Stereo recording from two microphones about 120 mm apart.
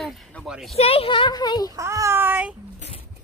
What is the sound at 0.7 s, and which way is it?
Speech, 55° left (ahead or behind).